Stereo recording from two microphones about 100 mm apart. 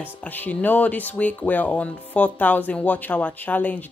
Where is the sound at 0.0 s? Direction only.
20° left (ahead or behind).